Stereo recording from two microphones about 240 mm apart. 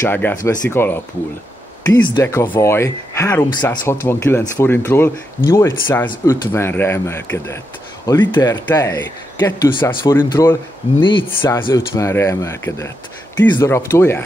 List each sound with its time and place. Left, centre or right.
0.0 s speech: centre
11.2 s speech: centre